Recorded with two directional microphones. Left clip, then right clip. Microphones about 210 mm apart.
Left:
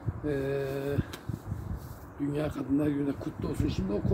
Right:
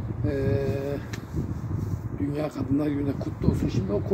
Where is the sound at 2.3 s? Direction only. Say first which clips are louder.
Right 2 dB; 15° right (ahead or behind).